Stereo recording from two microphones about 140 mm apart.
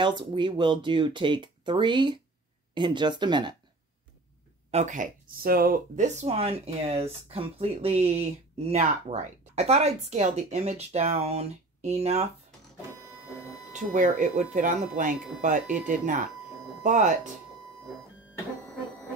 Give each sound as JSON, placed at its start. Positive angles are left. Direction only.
{"t": 0.0, "sound": "speech", "side_deg": -35}
{"t": 4.6, "sound": "speech", "side_deg": -55}
{"t": 13.7, "sound": "speech", "side_deg": -65}